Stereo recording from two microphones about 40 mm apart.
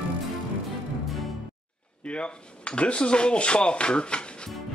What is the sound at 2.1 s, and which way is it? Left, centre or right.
Speech, left.